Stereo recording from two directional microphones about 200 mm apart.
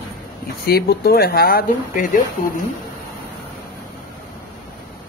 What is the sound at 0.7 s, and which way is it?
Speech, 50° left (ahead or behind).